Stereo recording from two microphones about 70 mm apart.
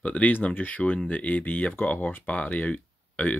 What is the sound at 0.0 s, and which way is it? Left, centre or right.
Speech, left.